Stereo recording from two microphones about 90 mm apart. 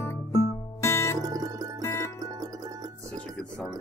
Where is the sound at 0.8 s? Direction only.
30° left (ahead or behind).